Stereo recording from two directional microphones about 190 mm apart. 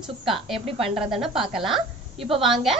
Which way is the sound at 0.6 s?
30° right (ahead or behind).